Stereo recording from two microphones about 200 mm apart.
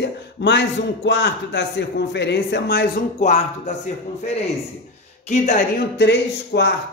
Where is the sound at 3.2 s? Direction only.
35° left (ahead or behind).